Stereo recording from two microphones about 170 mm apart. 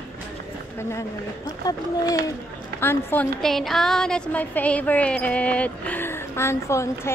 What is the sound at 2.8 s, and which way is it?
A woman's voice, 10° left (ahead or behind).